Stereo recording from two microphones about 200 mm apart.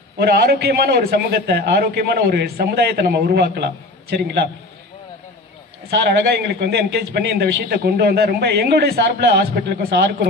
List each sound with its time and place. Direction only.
0.2 s a man's voice: 50° right (ahead or behind)
5.9 s a man's voice: 50° right (ahead or behind)